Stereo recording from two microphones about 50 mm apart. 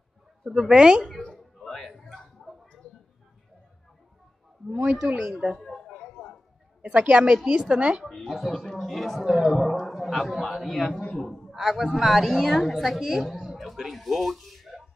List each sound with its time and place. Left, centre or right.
0.5 s speech: centre
1.3 s a sound: centre
4.6 s a woman's voice: right
5.3 s speech: centre
5.6 s a sound: centre
6.8 s a woman's voice: right
8.0 s a man's voice: centre